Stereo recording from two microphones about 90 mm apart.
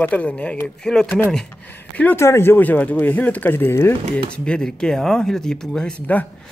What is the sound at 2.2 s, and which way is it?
Speech, 30° left (ahead or behind).